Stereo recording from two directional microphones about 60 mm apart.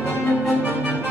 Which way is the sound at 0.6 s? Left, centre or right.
Right.